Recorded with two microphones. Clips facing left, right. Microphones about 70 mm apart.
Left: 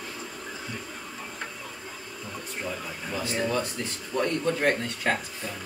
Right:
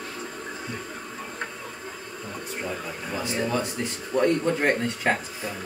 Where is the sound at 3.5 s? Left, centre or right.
Right.